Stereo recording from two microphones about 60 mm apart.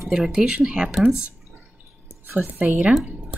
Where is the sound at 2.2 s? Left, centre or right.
Right.